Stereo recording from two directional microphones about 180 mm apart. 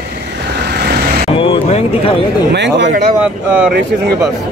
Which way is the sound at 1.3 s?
30° left (ahead or behind).